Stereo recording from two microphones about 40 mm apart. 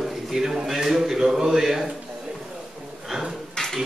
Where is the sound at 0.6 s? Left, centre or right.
Centre.